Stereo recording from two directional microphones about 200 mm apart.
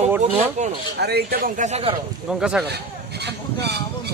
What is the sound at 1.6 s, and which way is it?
Speech, 30° right (ahead or behind).